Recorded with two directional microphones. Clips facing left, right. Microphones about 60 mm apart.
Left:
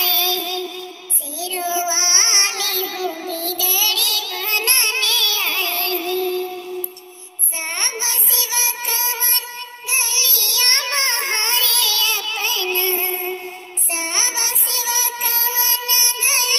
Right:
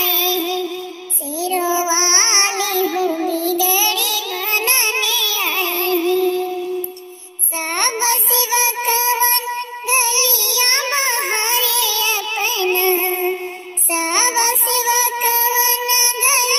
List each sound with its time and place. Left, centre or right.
0.0 s a sound: centre
1.4 s child singing: right
4.5 s music: centre
5.6 s music: right
7.7 s child singing: right